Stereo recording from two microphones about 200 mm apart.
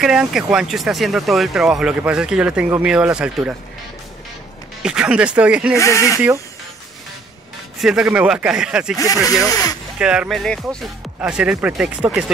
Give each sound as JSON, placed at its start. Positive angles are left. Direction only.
{"t": 0.0, "sound": "speech", "side_deg": -5}
{"t": 4.8, "sound": "speech", "side_deg": -5}
{"t": 5.8, "sound": "speech", "side_deg": 15}
{"t": 7.8, "sound": "speech", "side_deg": -5}
{"t": 8.9, "sound": "speech", "side_deg": 15}
{"t": 9.2, "sound": "speech", "side_deg": 0}
{"t": 9.5, "sound": "speech", "side_deg": 15}
{"t": 9.9, "sound": "speech", "side_deg": -5}